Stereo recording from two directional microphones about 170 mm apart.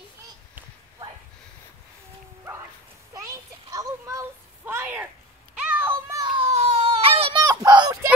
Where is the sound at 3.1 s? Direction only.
20° right (ahead or behind).